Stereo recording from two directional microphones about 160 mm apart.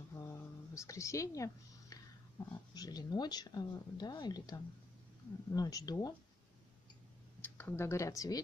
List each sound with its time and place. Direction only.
0.3 s a sound: 20° left (ahead or behind)
2.4 s speech: 15° left (ahead or behind)
7.4 s speech: 15° left (ahead or behind)